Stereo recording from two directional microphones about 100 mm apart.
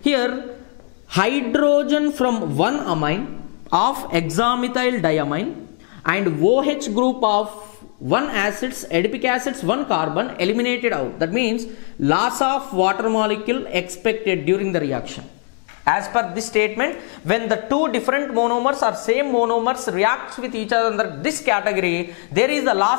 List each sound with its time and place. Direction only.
0.0 s a man's voice: 10° left (ahead or behind)